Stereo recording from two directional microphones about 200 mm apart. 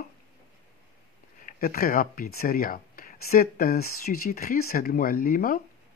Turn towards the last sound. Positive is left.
turn(degrees=45)  # may be behind; listen again after turning